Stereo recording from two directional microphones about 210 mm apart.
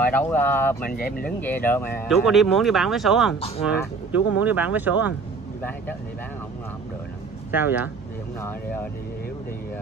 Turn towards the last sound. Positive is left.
turn(degrees=-10)  # may be behind; listen again after turning